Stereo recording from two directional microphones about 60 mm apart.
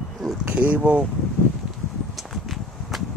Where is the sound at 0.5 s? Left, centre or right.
Right.